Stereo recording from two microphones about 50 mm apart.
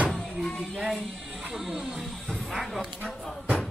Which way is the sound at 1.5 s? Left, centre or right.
Centre.